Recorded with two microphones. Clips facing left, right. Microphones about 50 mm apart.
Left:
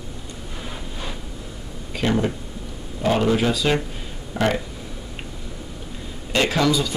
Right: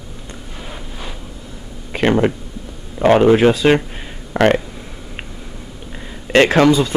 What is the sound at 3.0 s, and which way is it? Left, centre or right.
Speech, right.